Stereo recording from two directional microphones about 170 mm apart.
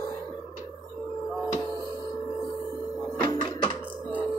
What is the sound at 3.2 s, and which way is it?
Music, 30° left (ahead or behind).